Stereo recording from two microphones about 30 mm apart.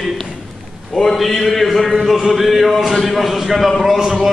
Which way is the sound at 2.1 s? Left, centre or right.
Centre.